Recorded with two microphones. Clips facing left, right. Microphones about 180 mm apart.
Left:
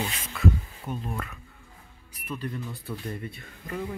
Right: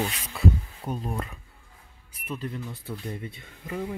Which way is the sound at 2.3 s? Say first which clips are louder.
Even; 20° right (ahead or behind).